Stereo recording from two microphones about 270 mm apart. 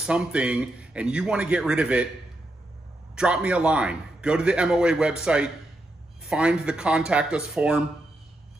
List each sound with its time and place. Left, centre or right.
0.0 s a man's voice: centre
3.2 s a man's voice: centre